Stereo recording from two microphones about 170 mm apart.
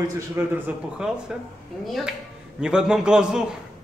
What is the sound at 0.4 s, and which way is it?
Speech, 5° right (ahead or behind).